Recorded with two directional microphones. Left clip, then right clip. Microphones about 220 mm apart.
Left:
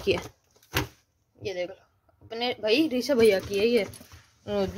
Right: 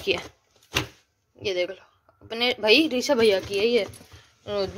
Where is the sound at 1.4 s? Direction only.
Centre (ahead or behind).